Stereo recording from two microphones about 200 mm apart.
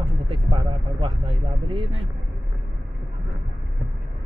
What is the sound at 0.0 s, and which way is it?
Vehicle, 25° right (ahead or behind).